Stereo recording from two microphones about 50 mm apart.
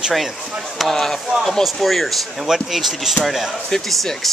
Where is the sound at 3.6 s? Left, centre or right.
Centre.